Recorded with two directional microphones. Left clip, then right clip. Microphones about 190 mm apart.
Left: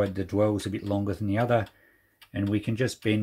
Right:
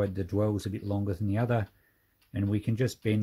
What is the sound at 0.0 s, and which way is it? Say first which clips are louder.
Speech: left 5 dB; 25° right (ahead or behind).